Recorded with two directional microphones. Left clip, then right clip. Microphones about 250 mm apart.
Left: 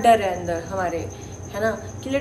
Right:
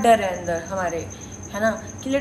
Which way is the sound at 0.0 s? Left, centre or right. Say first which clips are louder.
Even; centre.